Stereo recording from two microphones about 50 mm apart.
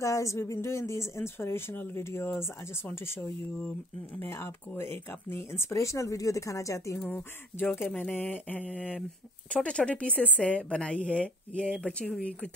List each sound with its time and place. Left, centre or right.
0.0 s a woman's voice: left
7.1 s speech: left
7.9 s a woman's voice: left